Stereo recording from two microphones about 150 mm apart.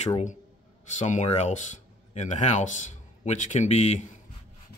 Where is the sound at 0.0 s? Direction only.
50° left (ahead or behind).